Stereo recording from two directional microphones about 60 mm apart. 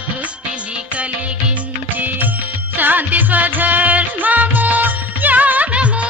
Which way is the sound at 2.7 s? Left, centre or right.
Right.